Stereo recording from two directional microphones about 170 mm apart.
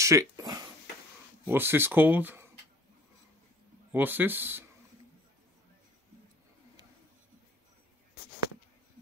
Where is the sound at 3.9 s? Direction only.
10° right (ahead or behind).